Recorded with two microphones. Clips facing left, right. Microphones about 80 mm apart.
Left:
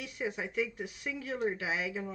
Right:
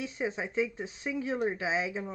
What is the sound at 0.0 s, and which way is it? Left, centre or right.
Speech, right.